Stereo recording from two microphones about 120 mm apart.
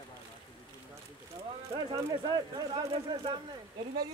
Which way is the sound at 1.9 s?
35° right (ahead or behind).